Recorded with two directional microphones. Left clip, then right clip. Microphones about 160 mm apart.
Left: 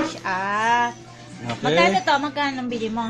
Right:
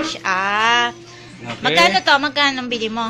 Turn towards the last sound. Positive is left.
turn(degrees=-10)  # may be behind; listen again after turning